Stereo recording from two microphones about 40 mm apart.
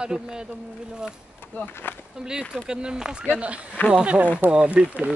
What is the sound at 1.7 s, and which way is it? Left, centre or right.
Speech, left.